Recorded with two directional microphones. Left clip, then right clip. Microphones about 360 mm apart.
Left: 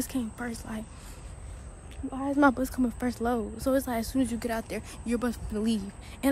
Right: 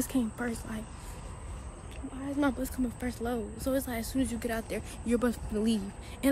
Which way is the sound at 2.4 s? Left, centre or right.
Centre.